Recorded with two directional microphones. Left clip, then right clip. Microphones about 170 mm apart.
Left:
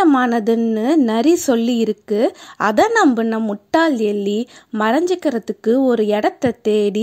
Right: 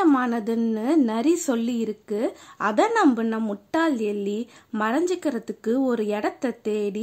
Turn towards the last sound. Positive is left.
turn(degrees=40)  # may be behind; listen again after turning